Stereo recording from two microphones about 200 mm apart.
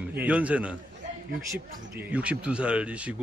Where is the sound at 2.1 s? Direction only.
5° right (ahead or behind).